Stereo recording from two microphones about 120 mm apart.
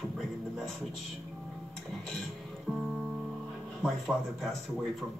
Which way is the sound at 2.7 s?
15° right (ahead or behind).